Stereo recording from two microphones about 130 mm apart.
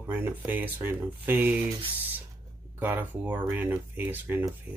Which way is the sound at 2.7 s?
15° right (ahead or behind).